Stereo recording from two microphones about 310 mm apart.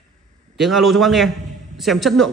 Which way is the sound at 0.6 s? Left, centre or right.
Centre.